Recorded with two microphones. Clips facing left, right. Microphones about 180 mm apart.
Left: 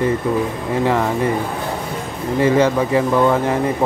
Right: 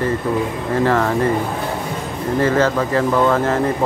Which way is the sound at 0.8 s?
15° left (ahead or behind).